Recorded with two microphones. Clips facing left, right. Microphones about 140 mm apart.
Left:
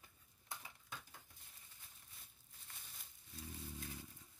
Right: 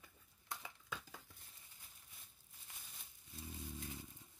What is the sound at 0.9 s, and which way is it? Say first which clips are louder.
Crumpling: right 4 dB; 90° right.